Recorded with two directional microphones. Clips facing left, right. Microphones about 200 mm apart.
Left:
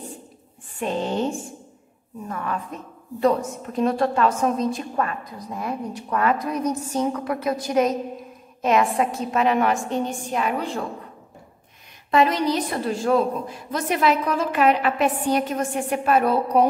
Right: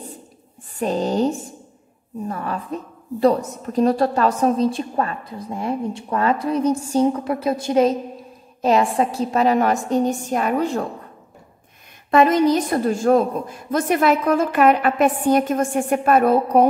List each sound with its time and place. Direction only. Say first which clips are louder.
0.7 s a woman's voice: right 4 dB; 40° right (ahead or behind)
12.1 s a woman's voice: right 5 dB; 50° right (ahead or behind)